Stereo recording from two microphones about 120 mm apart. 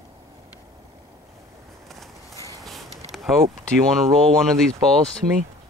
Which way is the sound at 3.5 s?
5° left (ahead or behind).